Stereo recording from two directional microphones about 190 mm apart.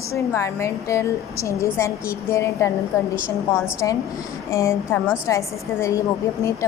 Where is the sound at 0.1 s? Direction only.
15° left (ahead or behind).